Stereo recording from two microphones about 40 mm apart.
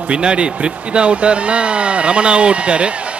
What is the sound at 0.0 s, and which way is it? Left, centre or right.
A man's voice, right.